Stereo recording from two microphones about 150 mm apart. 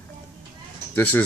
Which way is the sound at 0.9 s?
10° left (ahead or behind).